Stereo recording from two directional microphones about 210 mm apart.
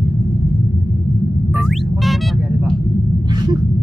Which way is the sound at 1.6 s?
Centre (ahead or behind).